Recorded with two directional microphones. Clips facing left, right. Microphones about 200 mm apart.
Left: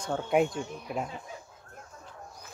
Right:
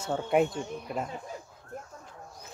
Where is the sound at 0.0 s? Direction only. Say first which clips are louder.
Even; centre (ahead or behind).